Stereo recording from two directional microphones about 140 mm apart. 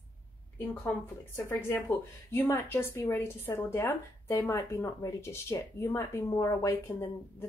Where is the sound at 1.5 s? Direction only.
15° left (ahead or behind).